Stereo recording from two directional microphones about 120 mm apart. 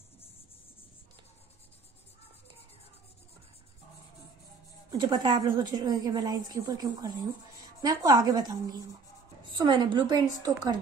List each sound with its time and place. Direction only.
4.9 s a woman's voice: 40° right (ahead or behind)